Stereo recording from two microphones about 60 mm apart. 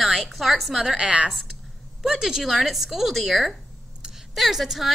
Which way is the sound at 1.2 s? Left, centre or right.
Centre.